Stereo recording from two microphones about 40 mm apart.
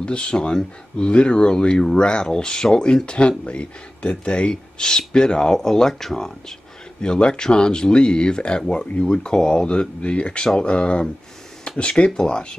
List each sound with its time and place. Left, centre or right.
0.0 s speech: left
7.0 s speech: left
11.7 s a sound: left
12.2 s speech: left